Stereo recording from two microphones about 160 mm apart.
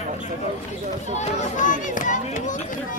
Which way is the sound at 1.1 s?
50° left (ahead or behind).